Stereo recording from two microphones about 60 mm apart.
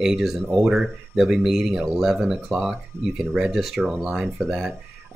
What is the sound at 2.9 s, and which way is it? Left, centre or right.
Speech, right.